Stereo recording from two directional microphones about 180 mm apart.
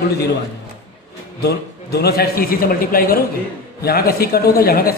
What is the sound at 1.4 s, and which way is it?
Speech, 65° left (ahead or behind).